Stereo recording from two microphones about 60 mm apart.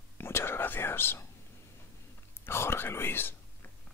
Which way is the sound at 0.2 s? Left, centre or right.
Left.